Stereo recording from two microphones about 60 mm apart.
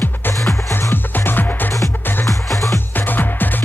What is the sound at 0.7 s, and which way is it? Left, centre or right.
Music, left.